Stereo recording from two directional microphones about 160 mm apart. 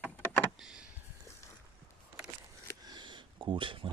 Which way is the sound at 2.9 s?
30° right (ahead or behind).